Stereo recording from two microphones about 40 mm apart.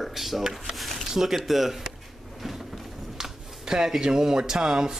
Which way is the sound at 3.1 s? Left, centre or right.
Centre.